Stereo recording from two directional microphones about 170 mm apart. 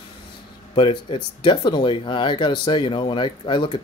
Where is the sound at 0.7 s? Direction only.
30° left (ahead or behind).